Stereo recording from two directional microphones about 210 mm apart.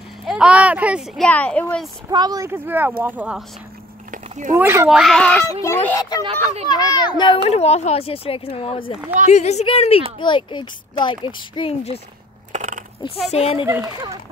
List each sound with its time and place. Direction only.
0.2 s speech: 5° right (ahead or behind)
2.0 s speech: 20° right (ahead or behind)
4.1 s a sound: 35° right (ahead or behind)
4.6 s a child's voice: 10° right (ahead or behind); by 6.2 s 15° left (ahead or behind)
6.2 s speech: 30° right (ahead or behind)
6.7 s a woman's voice: 20° left (ahead or behind)
12.5 s a sound: 35° right (ahead or behind)
13.3 s speech: 30° left (ahead or behind)
13.7 s speech: 15° right (ahead or behind)